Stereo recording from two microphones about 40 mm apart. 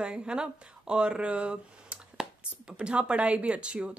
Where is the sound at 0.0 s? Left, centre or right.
Right.